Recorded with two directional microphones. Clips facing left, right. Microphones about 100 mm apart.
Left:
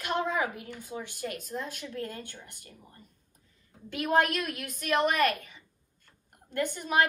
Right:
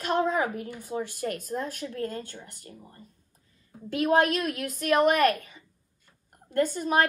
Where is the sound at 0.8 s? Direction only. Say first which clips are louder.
Right 6 dB; 45° right (ahead or behind).